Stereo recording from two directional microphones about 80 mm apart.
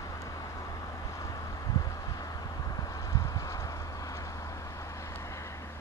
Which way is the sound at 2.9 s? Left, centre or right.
Left.